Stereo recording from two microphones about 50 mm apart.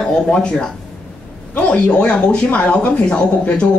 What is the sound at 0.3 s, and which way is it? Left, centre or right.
Speech, centre.